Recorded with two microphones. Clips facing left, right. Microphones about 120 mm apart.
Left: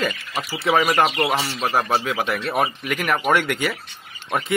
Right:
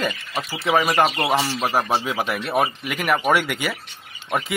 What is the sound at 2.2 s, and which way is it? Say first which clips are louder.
Speech: even; centre (ahead or behind).